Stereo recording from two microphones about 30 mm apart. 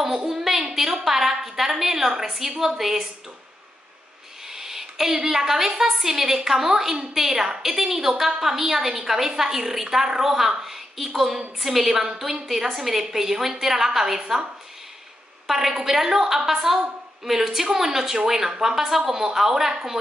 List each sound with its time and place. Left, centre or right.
0.0 s a sound: centre
1.4 s a woman's voice: centre
4.5 s a woman's voice: centre
7.6 s a woman's voice: centre
15.4 s a woman's voice: centre